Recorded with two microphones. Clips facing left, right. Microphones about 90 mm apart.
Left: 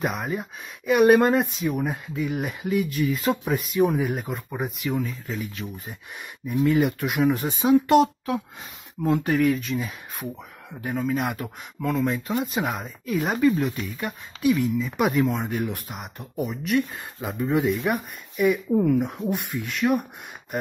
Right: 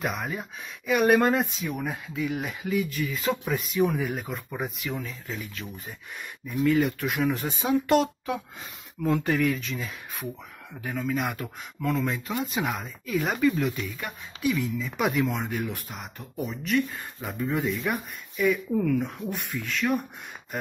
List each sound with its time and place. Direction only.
0.0 s speech: centre (ahead or behind)
5.6 s speech: 15° left (ahead or behind)
10.8 s speech: 15° left (ahead or behind)
11.2 s speech: 5° left (ahead or behind)
16.4 s speech: 15° left (ahead or behind)
19.5 s speech: 10° left (ahead or behind)